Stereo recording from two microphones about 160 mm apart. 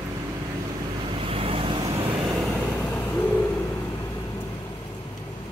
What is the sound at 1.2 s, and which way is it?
Vehicle, 35° right (ahead or behind).